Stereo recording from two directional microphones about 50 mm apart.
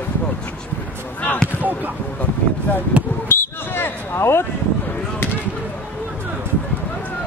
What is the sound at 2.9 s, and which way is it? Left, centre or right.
Speech, right.